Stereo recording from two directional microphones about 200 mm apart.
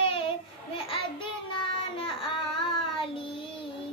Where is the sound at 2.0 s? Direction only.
25° left (ahead or behind).